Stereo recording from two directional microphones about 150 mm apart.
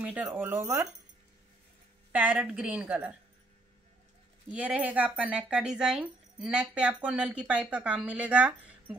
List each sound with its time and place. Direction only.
0.0 s speech: 10° right (ahead or behind)
2.1 s speech: 10° right (ahead or behind)
4.5 s speech: 10° right (ahead or behind)